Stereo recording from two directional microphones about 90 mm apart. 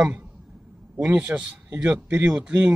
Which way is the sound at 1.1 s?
15° right (ahead or behind).